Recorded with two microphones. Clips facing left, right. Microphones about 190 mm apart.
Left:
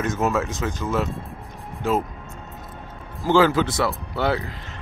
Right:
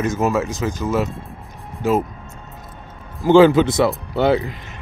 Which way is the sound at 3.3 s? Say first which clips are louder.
Right 7 dB; 20° right (ahead or behind).